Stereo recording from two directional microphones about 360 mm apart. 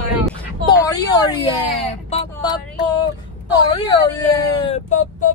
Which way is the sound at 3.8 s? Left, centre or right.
Centre.